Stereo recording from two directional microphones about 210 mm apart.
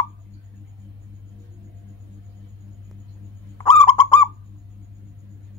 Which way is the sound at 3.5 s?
15° left (ahead or behind).